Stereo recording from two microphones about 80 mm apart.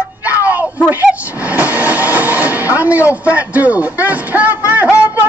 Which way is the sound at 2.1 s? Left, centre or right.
Right.